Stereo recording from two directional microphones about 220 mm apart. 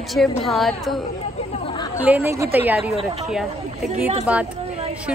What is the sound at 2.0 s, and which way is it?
Speech, 10° right (ahead or behind).